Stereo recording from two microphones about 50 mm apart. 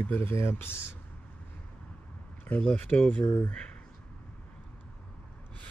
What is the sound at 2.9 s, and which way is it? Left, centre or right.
Speech, left.